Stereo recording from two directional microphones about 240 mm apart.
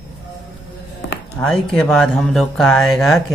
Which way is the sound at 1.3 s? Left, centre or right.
Centre.